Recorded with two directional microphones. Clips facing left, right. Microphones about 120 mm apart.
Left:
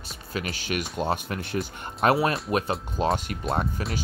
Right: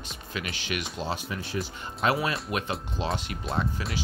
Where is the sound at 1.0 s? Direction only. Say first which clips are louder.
Left 5 dB; 55° left (ahead or behind).